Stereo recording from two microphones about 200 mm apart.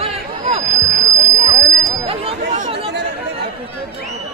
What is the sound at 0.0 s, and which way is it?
Hubbub, 30° right (ahead or behind).